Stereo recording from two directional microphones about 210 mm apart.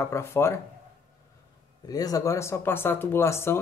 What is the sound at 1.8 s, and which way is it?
Speech, 15° left (ahead or behind).